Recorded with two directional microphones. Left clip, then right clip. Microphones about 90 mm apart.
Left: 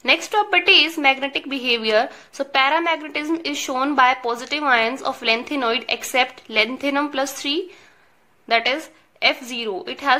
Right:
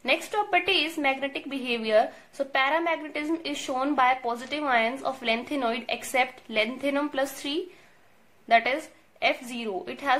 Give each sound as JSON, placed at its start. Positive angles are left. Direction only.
{"t": 0.0, "sound": "a woman's voice", "side_deg": 30}